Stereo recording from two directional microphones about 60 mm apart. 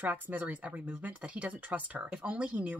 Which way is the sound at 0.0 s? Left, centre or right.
Right.